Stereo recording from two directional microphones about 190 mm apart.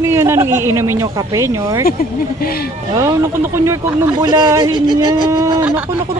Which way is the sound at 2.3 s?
50° left (ahead or behind).